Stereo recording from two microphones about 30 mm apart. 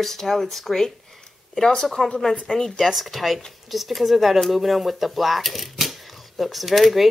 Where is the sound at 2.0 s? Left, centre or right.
Centre.